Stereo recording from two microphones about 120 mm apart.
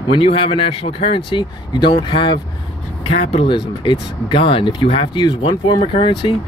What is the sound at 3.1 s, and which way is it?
Speech, 60° left (ahead or behind).